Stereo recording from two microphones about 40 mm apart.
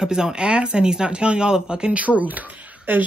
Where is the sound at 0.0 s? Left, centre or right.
Centre.